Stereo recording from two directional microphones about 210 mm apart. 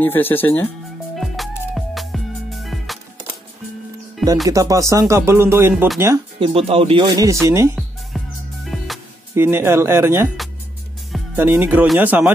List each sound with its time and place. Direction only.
0.0 s speech: 10° left (ahead or behind)
1.1 s music: centre (ahead or behind)
4.5 s speech: 15° right (ahead or behind)
6.4 s speech: 25° right (ahead or behind)
8.6 s music: centre (ahead or behind)
9.3 s speech: 10° right (ahead or behind)
11.3 s speech: 10° right (ahead or behind)